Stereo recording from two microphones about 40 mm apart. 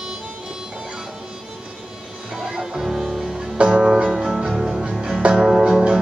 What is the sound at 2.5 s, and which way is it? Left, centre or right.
Music, centre.